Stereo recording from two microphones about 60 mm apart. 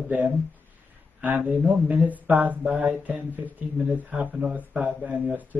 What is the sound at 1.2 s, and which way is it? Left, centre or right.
Speech, right.